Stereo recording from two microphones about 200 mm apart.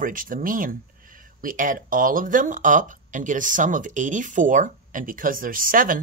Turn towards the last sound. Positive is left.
turn(degrees=-45)  # may be behind; listen again after turning